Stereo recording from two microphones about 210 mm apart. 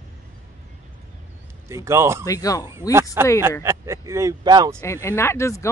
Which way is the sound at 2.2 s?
15° left (ahead or behind).